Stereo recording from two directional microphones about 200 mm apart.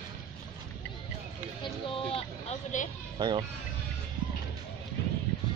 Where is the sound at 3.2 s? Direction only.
20° right (ahead or behind).